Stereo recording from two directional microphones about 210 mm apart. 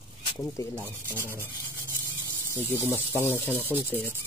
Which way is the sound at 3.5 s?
10° right (ahead or behind).